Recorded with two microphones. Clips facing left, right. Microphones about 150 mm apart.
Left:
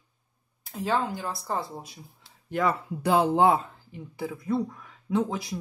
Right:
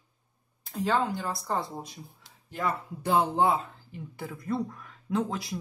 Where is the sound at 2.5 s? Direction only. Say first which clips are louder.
Left 5 dB; 85° left.